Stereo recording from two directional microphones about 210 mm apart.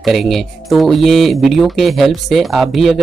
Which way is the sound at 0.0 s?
Centre (ahead or behind).